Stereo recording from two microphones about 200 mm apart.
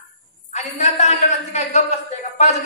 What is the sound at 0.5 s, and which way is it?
A man's voice, 35° left (ahead or behind).